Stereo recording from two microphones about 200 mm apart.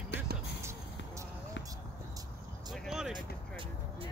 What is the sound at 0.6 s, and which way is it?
Basketball bounce, 15° right (ahead or behind).